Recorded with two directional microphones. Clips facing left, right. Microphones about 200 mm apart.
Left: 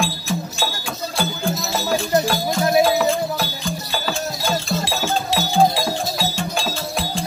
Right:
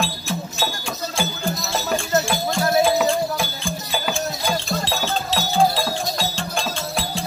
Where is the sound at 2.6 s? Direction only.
20° left (ahead or behind).